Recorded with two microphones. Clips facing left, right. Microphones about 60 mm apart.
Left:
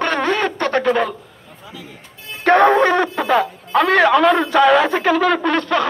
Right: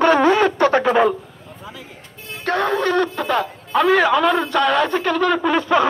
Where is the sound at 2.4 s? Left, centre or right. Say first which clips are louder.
Left 8 dB; left.